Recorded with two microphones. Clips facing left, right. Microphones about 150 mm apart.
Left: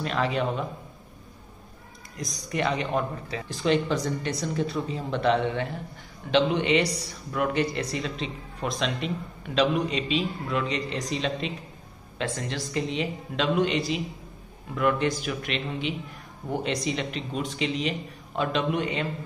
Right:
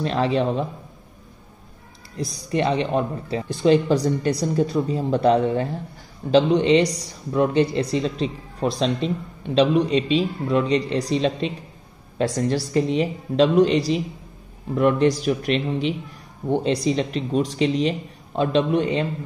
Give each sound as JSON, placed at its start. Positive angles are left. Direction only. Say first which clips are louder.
{"t": 0.0, "sound": "speech", "louder": "right 5 dB", "side_deg": -30}
{"t": 2.1, "sound": "speech", "louder": "right 6 dB", "side_deg": -30}